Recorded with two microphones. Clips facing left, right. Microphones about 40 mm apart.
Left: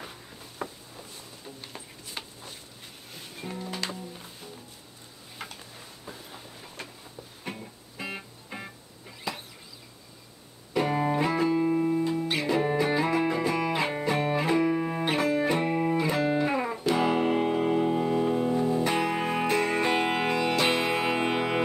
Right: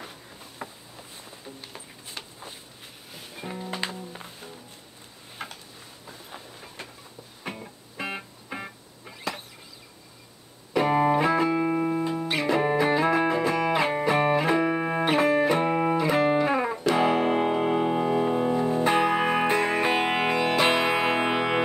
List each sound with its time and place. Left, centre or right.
0.0 s a sound: centre
1.4 s music: centre
2.2 s a sound: centre
3.1 s music: centre
3.7 s music: centre
5.4 s tick-tock: centre
6.3 s train: centre
7.4 s music: centre
10.9 s music: centre
11.5 s music: right
12.3 s music: centre
14.6 s music: right
16.3 s music: centre